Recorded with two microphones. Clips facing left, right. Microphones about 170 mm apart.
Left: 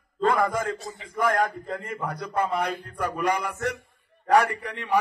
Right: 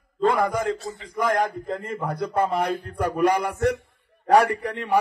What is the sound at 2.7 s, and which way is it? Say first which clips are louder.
Speech: right 4 dB; 55° right (ahead or behind).